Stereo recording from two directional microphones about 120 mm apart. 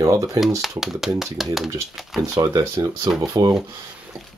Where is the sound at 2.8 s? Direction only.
40° right (ahead or behind).